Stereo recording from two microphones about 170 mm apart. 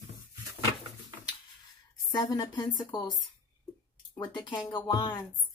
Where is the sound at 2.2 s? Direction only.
20° left (ahead or behind).